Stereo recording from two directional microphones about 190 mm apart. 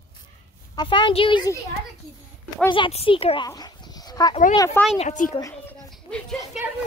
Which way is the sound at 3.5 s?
20° left (ahead or behind).